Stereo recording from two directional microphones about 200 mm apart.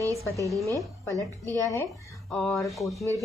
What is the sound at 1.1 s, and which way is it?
Speech, 15° right (ahead or behind).